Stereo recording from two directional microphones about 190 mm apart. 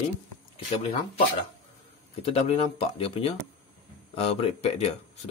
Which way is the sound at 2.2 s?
30° left (ahead or behind).